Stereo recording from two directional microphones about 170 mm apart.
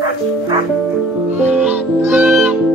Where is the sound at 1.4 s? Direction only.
5° right (ahead or behind).